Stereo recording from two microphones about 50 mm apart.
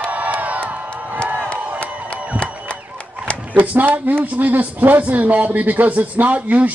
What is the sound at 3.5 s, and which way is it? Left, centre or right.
Speech, right.